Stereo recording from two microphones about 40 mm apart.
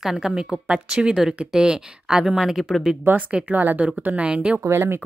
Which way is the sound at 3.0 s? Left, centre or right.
Right.